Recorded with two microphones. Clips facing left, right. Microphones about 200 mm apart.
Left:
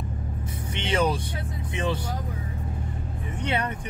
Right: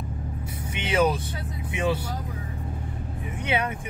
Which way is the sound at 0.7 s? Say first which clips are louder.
Right 2 dB; 5° right (ahead or behind).